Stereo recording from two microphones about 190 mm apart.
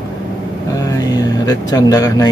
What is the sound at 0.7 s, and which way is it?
Speech, 20° left (ahead or behind).